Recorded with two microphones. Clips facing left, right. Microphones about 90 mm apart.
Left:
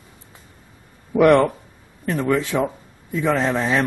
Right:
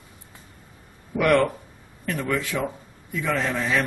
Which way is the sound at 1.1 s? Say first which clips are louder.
Left 6 dB; 25° left (ahead or behind).